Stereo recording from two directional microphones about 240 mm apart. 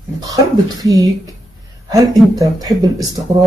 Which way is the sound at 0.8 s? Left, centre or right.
Centre.